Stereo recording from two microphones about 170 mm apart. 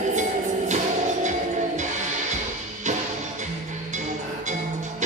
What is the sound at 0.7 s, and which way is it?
Music, 45° right (ahead or behind).